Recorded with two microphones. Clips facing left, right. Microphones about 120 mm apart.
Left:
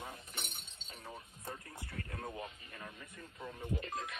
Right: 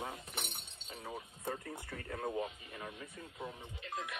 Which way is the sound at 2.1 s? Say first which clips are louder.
Right 8 dB; 25° right (ahead or behind).